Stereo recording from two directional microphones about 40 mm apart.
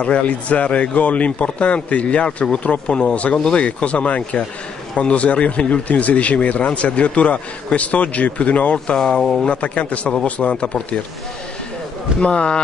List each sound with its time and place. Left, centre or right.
0.0 s speech: left
8.9 s speech: centre
9.5 s speech: left
12.2 s speech: left